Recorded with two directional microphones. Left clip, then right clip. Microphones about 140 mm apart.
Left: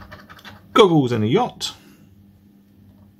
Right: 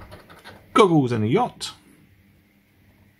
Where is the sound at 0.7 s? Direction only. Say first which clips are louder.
Left 3 dB; 10° right (ahead or behind).